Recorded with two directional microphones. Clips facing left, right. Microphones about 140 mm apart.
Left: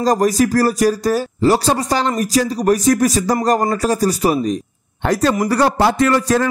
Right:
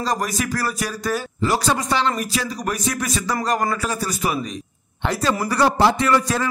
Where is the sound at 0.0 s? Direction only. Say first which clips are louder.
Left 9 dB; 40° left (ahead or behind).